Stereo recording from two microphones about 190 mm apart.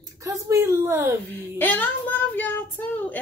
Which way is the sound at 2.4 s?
10° left (ahead or behind).